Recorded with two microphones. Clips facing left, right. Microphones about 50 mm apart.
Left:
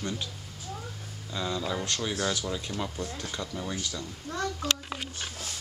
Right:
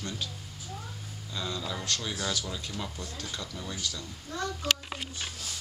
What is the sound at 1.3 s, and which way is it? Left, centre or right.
Speech, centre.